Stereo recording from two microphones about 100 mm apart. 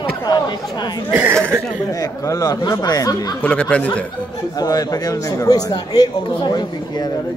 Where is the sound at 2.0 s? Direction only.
35° left (ahead or behind).